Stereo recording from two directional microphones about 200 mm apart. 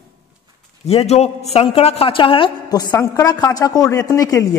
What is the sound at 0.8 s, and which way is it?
A man's voice, 30° left (ahead or behind).